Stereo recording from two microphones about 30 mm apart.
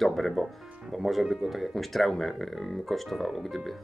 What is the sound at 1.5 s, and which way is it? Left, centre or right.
Speech, centre.